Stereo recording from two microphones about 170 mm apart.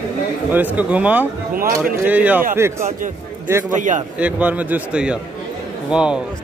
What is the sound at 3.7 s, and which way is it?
Speech, 50° right (ahead or behind).